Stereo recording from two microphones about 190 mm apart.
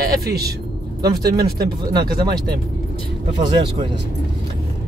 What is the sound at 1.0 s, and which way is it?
Speech, 55° right (ahead or behind).